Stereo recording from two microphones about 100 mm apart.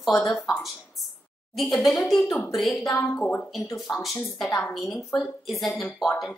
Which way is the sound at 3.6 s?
30° left (ahead or behind).